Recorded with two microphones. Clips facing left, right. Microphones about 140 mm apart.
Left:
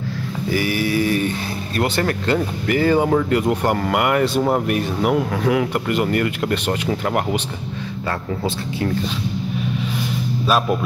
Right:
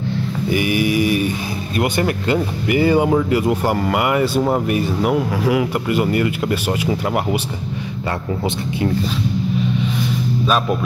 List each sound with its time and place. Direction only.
0.5 s mantra: 15° right (ahead or behind)
1.8 s speech: 10° right (ahead or behind)
10.4 s speech: 5° left (ahead or behind)